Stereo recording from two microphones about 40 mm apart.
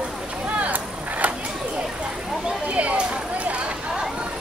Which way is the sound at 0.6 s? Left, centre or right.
Right.